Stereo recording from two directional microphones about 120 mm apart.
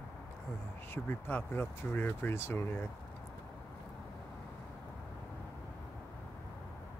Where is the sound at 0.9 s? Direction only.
15° left (ahead or behind).